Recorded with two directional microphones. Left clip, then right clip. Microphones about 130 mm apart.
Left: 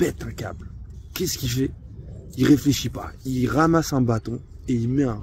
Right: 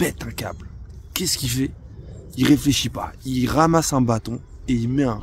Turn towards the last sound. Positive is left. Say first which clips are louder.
# right 2 dB
turn(degrees=-30)  # may be behind; listen again after turning